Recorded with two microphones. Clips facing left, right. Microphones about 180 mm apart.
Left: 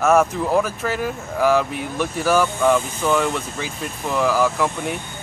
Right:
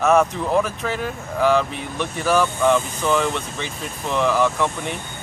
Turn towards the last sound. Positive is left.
turn(degrees=5)  # may be behind; listen again after turning